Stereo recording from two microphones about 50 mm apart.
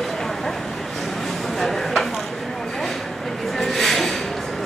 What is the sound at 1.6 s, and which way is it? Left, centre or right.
Chopping, centre.